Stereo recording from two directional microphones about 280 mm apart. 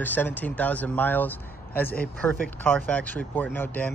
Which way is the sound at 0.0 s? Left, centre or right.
Centre.